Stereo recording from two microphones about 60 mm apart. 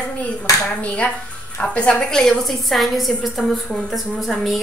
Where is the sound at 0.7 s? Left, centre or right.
Centre.